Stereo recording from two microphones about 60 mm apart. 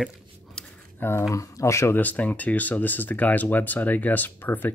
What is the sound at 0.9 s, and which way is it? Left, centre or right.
Speech, left.